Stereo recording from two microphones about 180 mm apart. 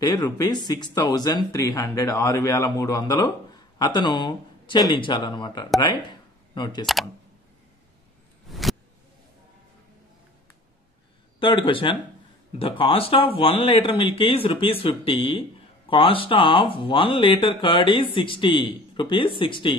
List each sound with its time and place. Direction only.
0.0 s speech: 20° left (ahead or behind)
8.5 s vehicle: centre (ahead or behind)
11.3 s speech: 30° left (ahead or behind)